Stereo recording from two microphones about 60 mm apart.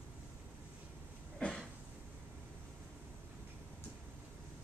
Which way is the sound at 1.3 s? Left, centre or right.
Centre.